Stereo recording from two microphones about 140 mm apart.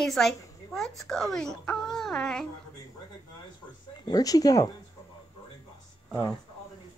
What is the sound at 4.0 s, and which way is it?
Speech, 30° left (ahead or behind).